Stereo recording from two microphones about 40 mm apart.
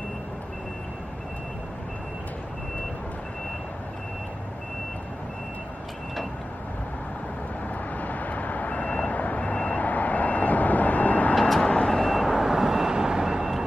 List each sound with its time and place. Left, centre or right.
8.0 s reversing beeps: left
11.3 s vehicle: centre
11.6 s vehicle: left
12.1 s vehicle: centre
12.4 s vehicle: centre